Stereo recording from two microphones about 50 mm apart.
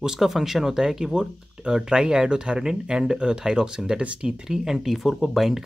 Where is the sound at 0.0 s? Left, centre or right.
Centre.